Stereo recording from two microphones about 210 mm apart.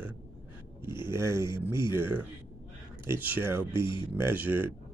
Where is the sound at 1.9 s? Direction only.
10° right (ahead or behind).